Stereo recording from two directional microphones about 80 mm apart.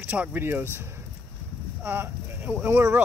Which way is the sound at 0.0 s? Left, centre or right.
Centre.